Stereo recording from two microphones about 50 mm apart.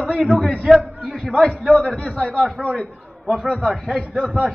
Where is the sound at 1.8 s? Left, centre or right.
Centre.